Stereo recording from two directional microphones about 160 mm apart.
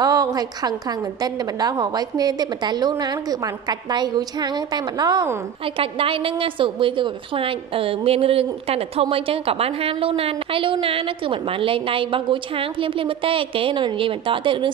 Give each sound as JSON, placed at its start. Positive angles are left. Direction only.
{"t": 0.0, "sound": "a woman's voice", "side_deg": -20}
{"t": 5.8, "sound": "a woman's voice", "side_deg": -35}